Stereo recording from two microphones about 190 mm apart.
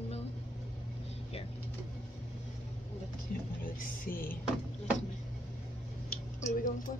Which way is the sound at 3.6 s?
50° left (ahead or behind).